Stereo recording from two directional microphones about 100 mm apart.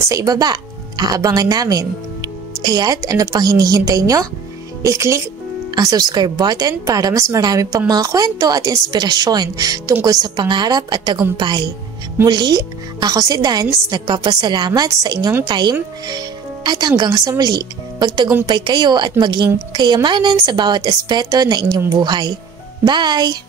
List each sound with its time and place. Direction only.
0.0 s a woman's voice: 35° right (ahead or behind)
14.7 s a woman's voice: 35° right (ahead or behind)